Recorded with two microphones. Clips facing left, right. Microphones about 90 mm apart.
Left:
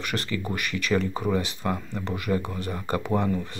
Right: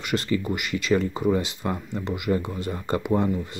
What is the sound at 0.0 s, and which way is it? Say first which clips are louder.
Speech: right 4 dB; 20° right (ahead or behind).